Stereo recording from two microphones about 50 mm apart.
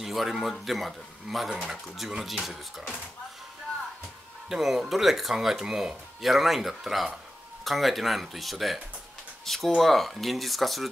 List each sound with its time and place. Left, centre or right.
0.0 s a man's voice: centre
4.5 s speech: centre